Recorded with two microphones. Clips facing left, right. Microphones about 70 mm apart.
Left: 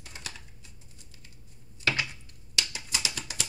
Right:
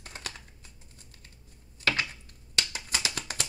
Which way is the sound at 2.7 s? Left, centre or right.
Right.